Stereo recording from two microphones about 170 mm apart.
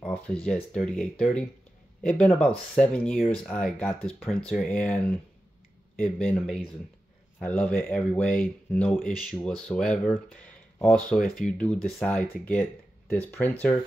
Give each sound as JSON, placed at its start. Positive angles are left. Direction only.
{"t": 0.0, "sound": "speech", "side_deg": 5}
{"t": 10.4, "sound": "a sound", "side_deg": 5}
{"t": 11.1, "sound": "speech", "side_deg": 55}
{"t": 11.4, "sound": "speech", "side_deg": 5}